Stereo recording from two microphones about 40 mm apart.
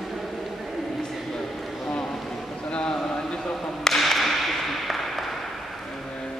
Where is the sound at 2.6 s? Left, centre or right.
Left.